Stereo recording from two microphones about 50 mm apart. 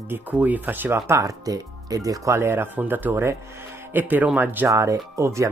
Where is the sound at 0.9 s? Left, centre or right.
Right.